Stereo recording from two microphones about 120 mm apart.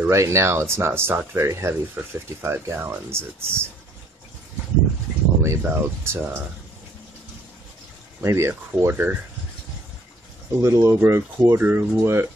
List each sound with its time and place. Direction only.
0.0 s speech: 25° right (ahead or behind)
5.4 s speech: 20° right (ahead or behind)
8.2 s speech: 25° right (ahead or behind)
10.6 s speech: 20° right (ahead or behind)